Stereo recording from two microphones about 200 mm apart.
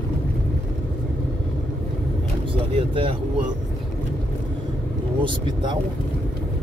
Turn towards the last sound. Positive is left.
turn(degrees=-25)  # may be behind; listen again after turning